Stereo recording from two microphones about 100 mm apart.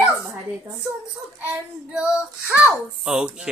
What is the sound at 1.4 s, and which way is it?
Child singing, 15° right (ahead or behind).